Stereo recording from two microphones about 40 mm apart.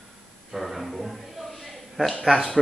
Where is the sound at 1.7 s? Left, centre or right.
Centre.